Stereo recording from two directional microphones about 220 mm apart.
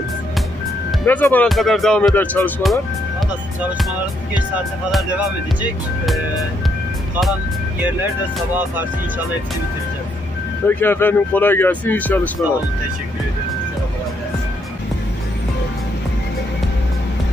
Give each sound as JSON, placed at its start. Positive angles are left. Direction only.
{"t": 1.0, "sound": "speech", "side_deg": 10}
{"t": 4.9, "sound": "speech", "side_deg": -5}
{"t": 10.7, "sound": "speech", "side_deg": 10}